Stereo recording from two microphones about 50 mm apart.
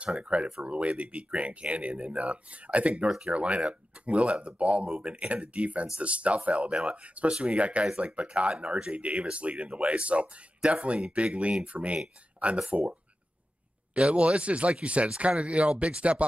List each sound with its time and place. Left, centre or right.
0.0 s speech: right
8.6 s speech: centre
8.9 s speech: right
13.9 s speech: right